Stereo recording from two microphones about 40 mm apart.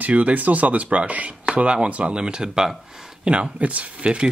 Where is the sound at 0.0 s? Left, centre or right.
Right.